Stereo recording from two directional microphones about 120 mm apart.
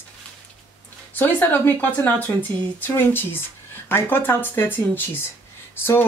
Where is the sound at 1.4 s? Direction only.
15° left (ahead or behind).